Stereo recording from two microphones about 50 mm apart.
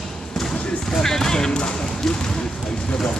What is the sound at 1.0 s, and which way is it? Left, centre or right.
Speech, centre.